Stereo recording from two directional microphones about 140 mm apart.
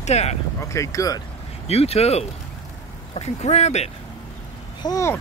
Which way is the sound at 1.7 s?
45° left (ahead or behind).